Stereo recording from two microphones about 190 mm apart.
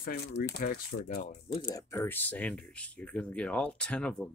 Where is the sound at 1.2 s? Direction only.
35° left (ahead or behind).